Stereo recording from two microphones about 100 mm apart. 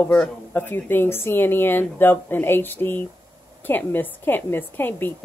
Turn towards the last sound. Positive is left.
turn(degrees=20)  # may be behind; listen again after turning